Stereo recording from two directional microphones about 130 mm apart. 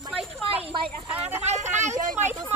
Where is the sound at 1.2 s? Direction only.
60° right (ahead or behind).